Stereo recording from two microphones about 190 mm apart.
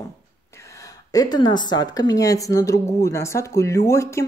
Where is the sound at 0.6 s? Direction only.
15° left (ahead or behind).